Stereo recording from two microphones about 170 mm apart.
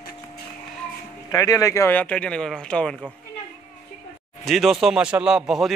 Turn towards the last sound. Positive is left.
turn(degrees=0)  # may be behind; listen again after turning